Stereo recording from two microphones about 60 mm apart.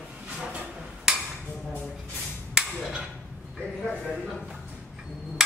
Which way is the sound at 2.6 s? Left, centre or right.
Centre.